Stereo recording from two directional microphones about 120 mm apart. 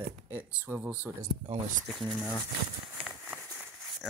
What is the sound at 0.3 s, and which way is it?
Speech, 15° right (ahead or behind).